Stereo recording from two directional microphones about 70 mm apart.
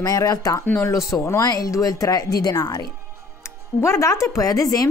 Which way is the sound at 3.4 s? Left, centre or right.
Left.